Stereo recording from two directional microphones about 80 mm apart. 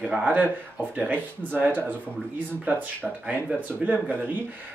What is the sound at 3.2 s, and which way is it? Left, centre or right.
Speech, centre.